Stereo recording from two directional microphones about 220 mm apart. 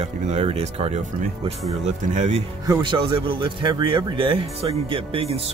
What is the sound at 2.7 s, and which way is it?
Speech, 20° right (ahead or behind).